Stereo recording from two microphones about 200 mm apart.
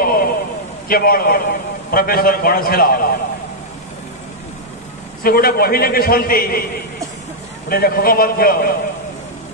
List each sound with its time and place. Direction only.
0.0 s a sound: 45° left (ahead or behind)
0.8 s a man's voice: 50° left (ahead or behind)
5.2 s a man's voice: 50° left (ahead or behind)
7.7 s a man's voice: 50° left (ahead or behind)